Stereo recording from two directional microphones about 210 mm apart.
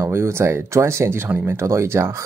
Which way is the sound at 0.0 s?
10° right (ahead or behind).